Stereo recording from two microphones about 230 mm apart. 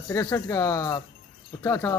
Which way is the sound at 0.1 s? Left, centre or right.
Centre.